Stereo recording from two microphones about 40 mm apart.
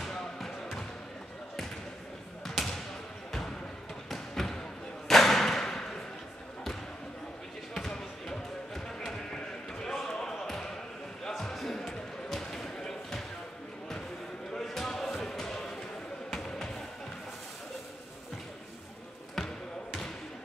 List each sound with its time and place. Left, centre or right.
0.0 s basketball bounce: centre
2.4 s basketball bounce: centre
4.1 s music: centre
5.0 s thump: centre
7.9 s basketball bounce: centre
11.2 s basketball bounce: centre
14.5 s basketball bounce: centre
15.1 s music: centre
16.3 s basketball bounce: centre